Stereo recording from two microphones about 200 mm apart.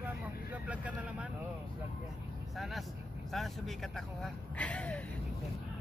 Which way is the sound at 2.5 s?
Centre (ahead or behind).